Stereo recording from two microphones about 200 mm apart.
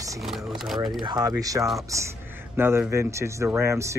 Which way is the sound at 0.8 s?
20° right (ahead or behind).